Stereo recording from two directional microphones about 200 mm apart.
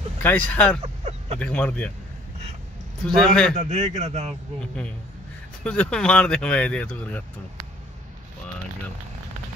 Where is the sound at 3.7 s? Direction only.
35° right (ahead or behind).